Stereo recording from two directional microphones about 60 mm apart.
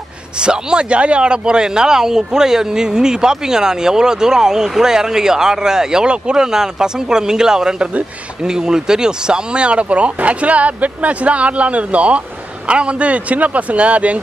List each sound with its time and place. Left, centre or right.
0.4 s speech: centre